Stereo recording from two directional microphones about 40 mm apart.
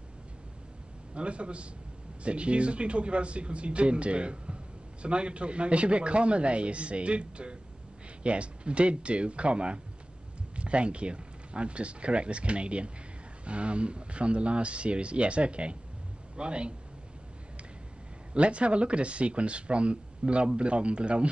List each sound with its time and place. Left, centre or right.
1.1 s speech: right
18.3 s speech: right